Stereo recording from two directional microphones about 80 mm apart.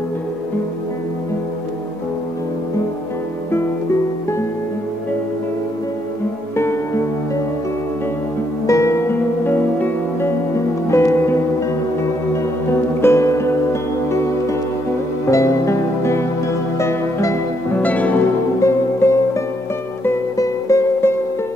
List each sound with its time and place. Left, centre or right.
6.5 s music: left
8.6 s music: left
10.9 s music: left
13.0 s music: left
17.6 s music: left
18.6 s music: left